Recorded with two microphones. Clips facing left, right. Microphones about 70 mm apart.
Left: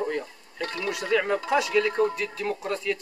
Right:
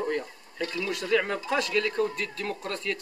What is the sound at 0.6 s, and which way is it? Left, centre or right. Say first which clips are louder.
Speech: even; left.